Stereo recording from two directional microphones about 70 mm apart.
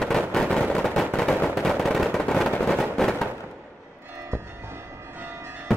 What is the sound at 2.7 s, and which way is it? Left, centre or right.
Fireworks, centre.